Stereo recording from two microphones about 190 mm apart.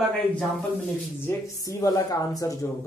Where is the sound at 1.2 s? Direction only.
15° left (ahead or behind).